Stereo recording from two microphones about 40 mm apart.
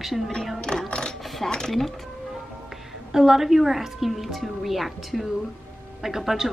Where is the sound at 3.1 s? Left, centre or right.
Centre.